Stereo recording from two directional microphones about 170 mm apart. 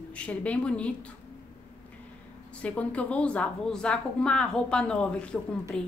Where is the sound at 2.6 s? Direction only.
10° left (ahead or behind).